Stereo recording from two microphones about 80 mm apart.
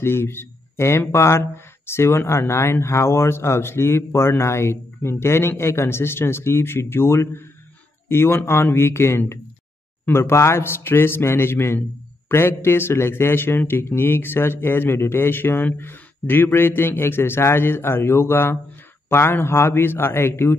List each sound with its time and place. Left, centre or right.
0.0 s a man's voice: left